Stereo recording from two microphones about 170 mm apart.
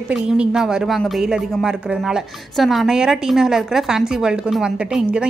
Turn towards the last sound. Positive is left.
turn(degrees=-5)  # may be behind; listen again after turning